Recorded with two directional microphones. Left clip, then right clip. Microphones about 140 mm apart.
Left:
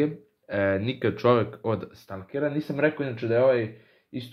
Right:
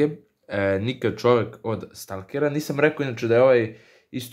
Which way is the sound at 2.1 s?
35° right (ahead or behind).